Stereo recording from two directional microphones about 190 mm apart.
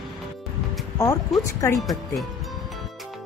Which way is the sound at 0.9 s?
15° left (ahead or behind).